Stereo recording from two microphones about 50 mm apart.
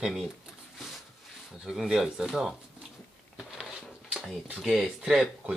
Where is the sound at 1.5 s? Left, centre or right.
Centre.